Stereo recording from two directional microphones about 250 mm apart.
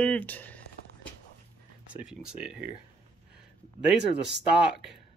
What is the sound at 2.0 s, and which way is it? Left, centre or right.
Speech, centre.